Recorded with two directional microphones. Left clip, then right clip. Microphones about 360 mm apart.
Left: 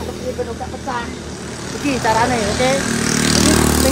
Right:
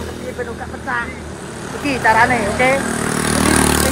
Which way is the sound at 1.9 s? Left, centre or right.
Centre.